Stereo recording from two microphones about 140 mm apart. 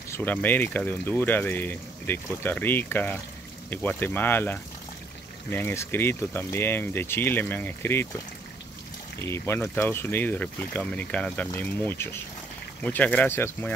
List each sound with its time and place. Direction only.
0.1 s speech: 15° left (ahead or behind)
9.2 s speech: 20° left (ahead or behind)